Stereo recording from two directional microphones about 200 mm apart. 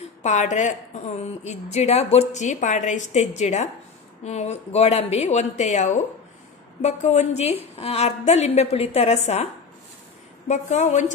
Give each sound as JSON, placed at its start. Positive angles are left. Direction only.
{"t": 0.2, "sound": "a woman's voice", "side_deg": 35}
{"t": 10.5, "sound": "a woman's voice", "side_deg": 35}